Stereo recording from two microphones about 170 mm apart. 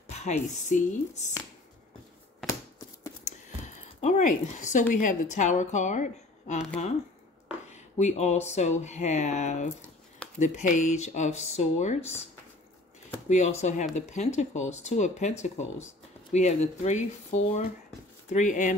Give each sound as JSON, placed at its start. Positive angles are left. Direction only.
{"t": 0.0, "sound": "speech", "side_deg": 40}
{"t": 3.3, "sound": "speech", "side_deg": 45}
{"t": 7.7, "sound": "speech", "side_deg": 40}
{"t": 13.3, "sound": "speech", "side_deg": 40}